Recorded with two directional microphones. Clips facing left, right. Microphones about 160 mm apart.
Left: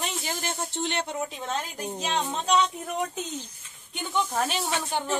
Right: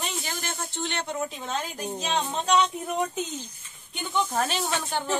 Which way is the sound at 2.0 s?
10° left (ahead or behind).